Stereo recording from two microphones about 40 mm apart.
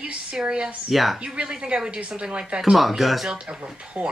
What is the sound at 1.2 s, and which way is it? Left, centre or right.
Speech, right.